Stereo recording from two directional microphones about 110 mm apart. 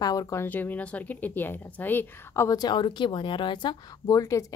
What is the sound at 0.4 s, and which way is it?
Speech, 15° left (ahead or behind).